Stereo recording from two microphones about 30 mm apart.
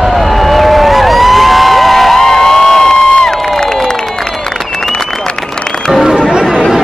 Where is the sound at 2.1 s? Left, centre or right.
Centre.